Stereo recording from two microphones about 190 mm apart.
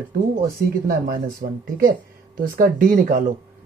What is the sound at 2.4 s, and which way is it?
Speech, 50° right (ahead or behind).